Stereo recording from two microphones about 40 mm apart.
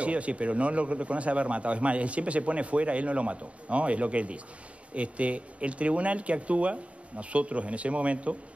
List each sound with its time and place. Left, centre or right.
0.0 s a man's voice: right